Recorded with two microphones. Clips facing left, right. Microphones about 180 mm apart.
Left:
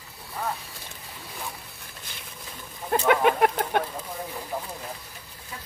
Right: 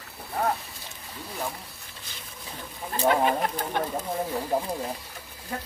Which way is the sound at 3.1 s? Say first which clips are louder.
Left 2 dB; 70° left (ahead or behind).